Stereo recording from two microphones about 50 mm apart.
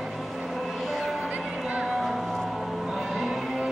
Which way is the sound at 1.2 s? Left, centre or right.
Right.